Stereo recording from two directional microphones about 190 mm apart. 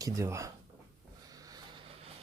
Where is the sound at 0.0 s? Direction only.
15° right (ahead or behind).